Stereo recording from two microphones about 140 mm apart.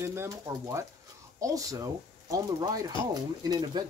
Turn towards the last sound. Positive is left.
turn(degrees=-30)  # may be behind; listen again after turning